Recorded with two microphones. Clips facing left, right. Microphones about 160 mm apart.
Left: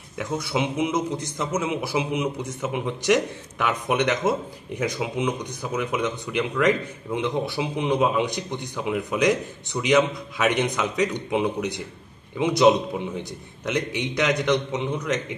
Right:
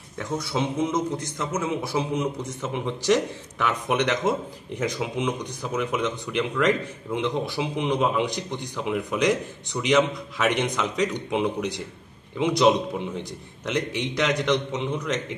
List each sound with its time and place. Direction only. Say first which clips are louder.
0.5 s a man's voice: left 1 dB; 15° left (ahead or behind)